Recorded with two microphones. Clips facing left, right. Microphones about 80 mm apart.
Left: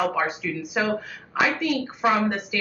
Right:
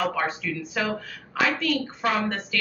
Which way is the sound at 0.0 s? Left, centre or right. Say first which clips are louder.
Left 2 dB; centre.